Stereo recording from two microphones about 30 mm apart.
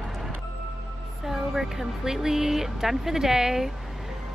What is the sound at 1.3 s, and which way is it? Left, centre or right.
Speech, centre.